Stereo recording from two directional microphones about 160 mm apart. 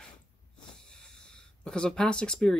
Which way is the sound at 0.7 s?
5° left (ahead or behind).